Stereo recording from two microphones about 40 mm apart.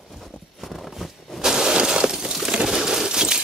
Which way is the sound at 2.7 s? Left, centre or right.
Centre.